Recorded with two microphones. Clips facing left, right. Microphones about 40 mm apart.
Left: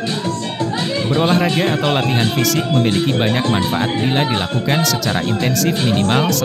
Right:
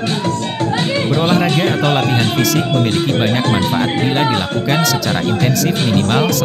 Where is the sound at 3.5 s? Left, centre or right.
Right.